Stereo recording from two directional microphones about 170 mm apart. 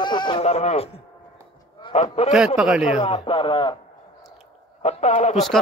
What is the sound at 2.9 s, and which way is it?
Speech, 40° left (ahead or behind).